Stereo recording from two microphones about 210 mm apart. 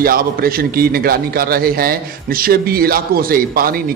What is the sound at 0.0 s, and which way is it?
A man's voice, 45° right (ahead or behind).